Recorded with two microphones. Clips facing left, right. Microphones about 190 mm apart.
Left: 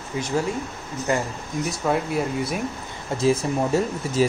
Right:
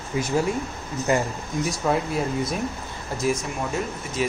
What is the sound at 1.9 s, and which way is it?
Speech, 5° left (ahead or behind).